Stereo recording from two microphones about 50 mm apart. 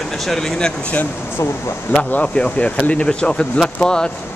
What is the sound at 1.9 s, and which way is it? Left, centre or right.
Speech, left.